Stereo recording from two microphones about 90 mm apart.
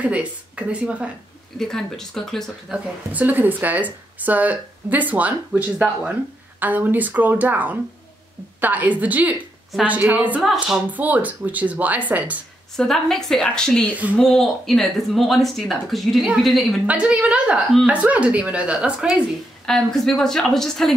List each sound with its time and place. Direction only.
0.0 s speech: 15° right (ahead or behind)
1.6 s speech: 5° left (ahead or behind)
2.7 s speech: 20° right (ahead or behind)
12.7 s a woman's voice: 5° left (ahead or behind)
16.8 s speech: 15° right (ahead or behind)
19.6 s speech: 5° left (ahead or behind)